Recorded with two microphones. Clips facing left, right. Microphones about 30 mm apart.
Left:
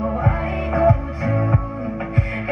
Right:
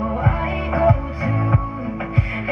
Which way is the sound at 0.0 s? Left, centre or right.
Centre.